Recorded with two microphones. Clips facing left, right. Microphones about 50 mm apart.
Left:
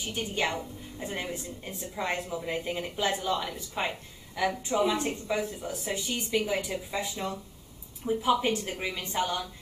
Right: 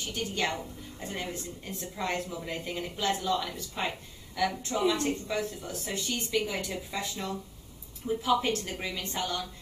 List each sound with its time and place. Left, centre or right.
0.1 s speech: centre